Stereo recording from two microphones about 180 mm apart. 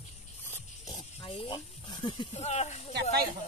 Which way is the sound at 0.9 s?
25° left (ahead or behind).